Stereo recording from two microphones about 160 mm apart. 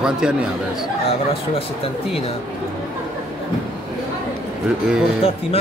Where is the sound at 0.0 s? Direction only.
5° right (ahead or behind).